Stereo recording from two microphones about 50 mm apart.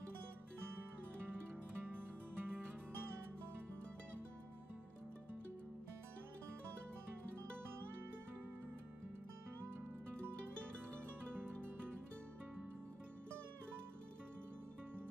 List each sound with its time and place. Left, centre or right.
1.4 s music: right